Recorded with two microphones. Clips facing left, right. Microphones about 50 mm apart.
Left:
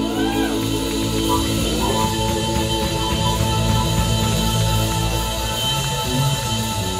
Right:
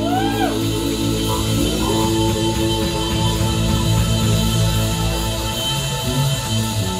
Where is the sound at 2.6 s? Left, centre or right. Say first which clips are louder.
Right 2 dB; centre.